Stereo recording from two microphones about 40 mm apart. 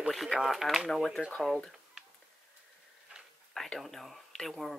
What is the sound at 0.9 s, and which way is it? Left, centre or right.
Speech, centre.